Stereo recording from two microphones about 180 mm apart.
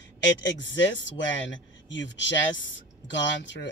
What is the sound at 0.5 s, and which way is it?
Speech, 85° left.